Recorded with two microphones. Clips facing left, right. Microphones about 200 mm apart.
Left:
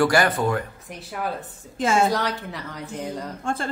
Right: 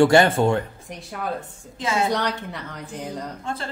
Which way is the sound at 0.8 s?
5° left (ahead or behind).